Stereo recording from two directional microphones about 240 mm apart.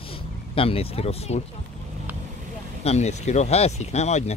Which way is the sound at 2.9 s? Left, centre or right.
Left.